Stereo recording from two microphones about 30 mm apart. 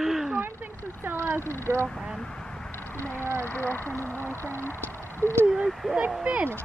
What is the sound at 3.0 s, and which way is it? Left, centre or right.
Speech, left.